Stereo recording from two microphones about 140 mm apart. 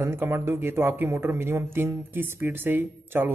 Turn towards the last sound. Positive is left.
turn(degrees=-15)  # may be behind; listen again after turning